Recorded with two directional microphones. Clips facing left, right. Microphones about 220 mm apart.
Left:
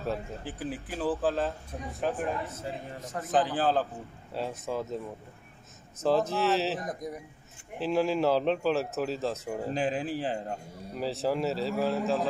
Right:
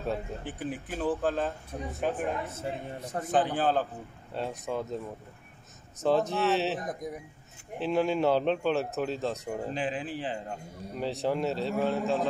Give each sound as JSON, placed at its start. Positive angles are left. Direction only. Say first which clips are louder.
{"t": 0.0, "sound": "speech", "louder": "right 1 dB", "side_deg": 0}
{"t": 2.5, "sound": "a man's voice", "louder": "right 2 dB", "side_deg": -30}
{"t": 3.3, "sound": "speech", "louder": "even", "side_deg": 0}
{"t": 9.8, "sound": "speech", "louder": "left 3 dB", "side_deg": 40}
{"t": 11.0, "sound": "speech", "louder": "even", "side_deg": 0}